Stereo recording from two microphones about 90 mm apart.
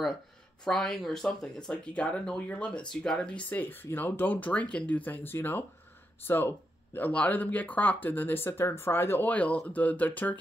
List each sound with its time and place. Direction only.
0.7 s speech: 5° left (ahead or behind)
3.4 s speech: 20° left (ahead or behind)